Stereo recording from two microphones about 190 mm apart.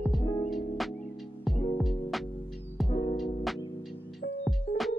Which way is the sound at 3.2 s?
Centre (ahead or behind).